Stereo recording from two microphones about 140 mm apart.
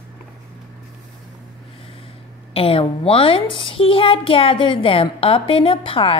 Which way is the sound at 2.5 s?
45° left (ahead or behind).